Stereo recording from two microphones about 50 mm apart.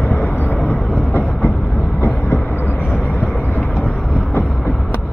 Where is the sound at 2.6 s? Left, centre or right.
Left.